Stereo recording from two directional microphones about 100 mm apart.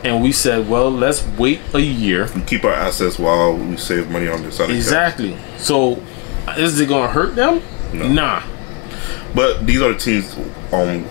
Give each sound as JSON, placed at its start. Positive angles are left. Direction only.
{"t": 0.0, "sound": "a man's voice", "side_deg": 15}